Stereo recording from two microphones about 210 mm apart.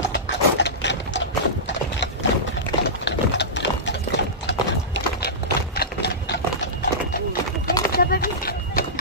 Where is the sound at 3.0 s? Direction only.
55° left (ahead or behind).